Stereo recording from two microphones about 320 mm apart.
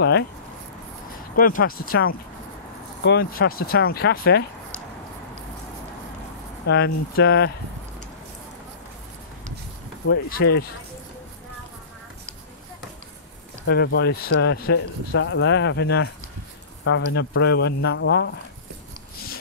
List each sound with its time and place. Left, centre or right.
1.3 s speech: left
6.7 s speech: left
10.0 s speech: left
13.7 s speech: left